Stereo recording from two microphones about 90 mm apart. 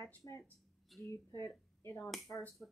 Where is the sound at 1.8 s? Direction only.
20° left (ahead or behind).